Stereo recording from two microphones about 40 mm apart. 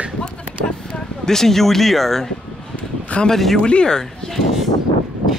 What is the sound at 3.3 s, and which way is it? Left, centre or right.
Speech, centre.